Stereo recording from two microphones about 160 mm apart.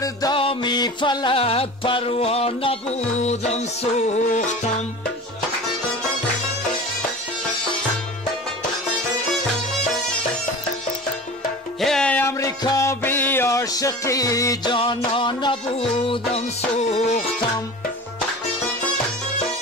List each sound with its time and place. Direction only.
0.0 s music: 20° left (ahead or behind)
0.4 s music: 30° left (ahead or behind); by 4.7 s 50° left (ahead or behind)
11.8 s music: 5° left (ahead or behind); by 17.3 s 45° left (ahead or behind)